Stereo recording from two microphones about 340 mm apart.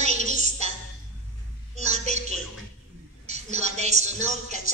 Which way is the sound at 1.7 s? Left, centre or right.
Centre.